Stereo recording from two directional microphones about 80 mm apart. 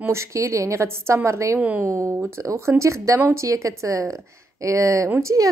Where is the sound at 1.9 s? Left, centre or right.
Right.